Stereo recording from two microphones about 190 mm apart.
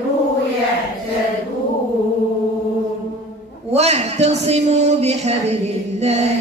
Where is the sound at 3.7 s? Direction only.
35° right (ahead or behind).